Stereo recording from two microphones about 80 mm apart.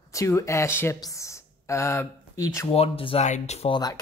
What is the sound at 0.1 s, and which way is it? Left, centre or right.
Speech, left.